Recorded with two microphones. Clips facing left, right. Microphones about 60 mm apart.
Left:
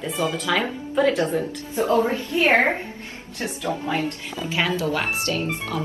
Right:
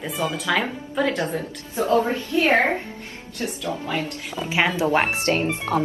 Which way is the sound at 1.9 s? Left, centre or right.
Left.